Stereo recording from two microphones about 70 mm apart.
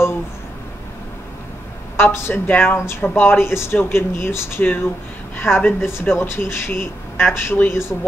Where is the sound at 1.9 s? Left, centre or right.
Left.